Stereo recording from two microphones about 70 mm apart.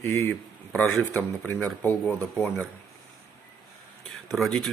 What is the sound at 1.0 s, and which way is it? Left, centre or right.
Speech, left.